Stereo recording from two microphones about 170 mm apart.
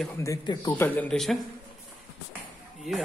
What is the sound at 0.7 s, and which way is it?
Speech, 10° left (ahead or behind).